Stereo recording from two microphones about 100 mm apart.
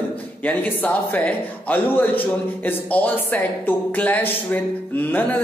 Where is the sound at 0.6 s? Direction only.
15° left (ahead or behind).